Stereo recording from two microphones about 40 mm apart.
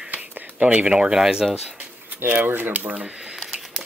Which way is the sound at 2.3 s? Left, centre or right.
Right.